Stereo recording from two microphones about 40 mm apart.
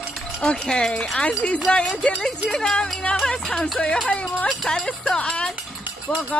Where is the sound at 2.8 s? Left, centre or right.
Left.